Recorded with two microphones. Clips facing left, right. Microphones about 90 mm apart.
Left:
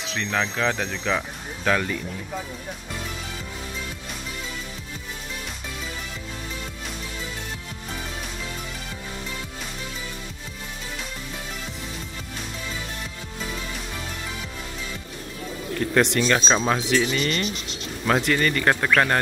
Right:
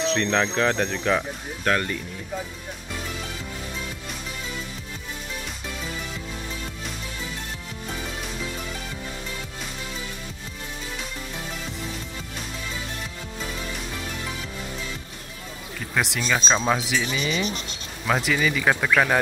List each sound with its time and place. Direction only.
0.0 s speech: centre (ahead or behind)
15.8 s speech: centre (ahead or behind)